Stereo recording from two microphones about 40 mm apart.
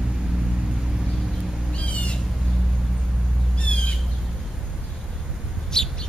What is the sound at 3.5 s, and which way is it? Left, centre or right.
Squawk, left.